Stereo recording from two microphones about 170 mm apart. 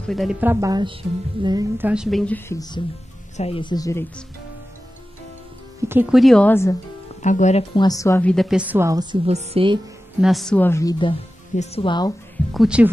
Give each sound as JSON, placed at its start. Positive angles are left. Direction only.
{"t": 0.1, "sound": "a woman's voice", "side_deg": 0}
{"t": 0.4, "sound": "a woman's voice", "side_deg": -15}
{"t": 1.8, "sound": "speech", "side_deg": -5}
{"t": 3.3, "sound": "speech", "side_deg": 35}
{"t": 5.8, "sound": "speech", "side_deg": -10}
{"t": 6.1, "sound": "speech", "side_deg": 0}
{"t": 7.2, "sound": "speech", "side_deg": 45}
{"t": 7.7, "sound": "a woman's voice", "side_deg": 25}
{"t": 9.2, "sound": "speech", "side_deg": -40}
{"t": 10.2, "sound": "speech", "side_deg": 0}
{"t": 11.5, "sound": "speech", "side_deg": 40}
{"t": 12.5, "sound": "speech", "side_deg": -5}